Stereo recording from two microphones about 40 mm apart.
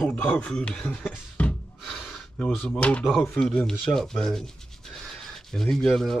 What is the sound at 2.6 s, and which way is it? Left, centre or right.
Speech, left.